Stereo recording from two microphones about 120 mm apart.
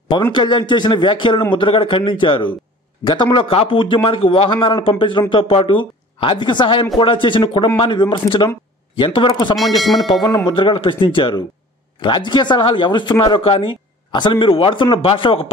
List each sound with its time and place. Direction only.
0.3 s speech: 40° left (ahead or behind)
9.6 s speech: centre (ahead or behind)
10.2 s speech: 35° left (ahead or behind)